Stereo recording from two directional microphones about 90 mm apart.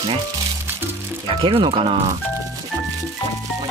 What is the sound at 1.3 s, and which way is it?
Speech, 65° right (ahead or behind).